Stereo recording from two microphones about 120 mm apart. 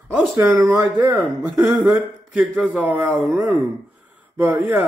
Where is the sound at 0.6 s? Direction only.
15° right (ahead or behind).